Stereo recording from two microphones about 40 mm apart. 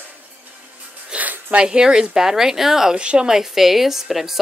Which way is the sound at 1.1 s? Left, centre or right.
Right.